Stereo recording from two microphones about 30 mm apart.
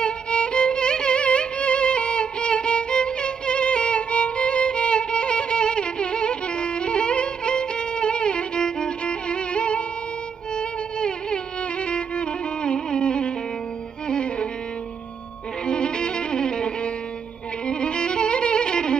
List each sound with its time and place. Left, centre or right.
0.0 s music: left
10.5 s music: left
15.6 s music: left